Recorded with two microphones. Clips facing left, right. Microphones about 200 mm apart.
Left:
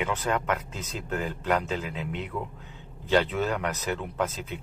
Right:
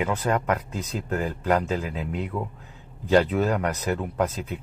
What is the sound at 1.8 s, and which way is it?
Speech, 5° right (ahead or behind).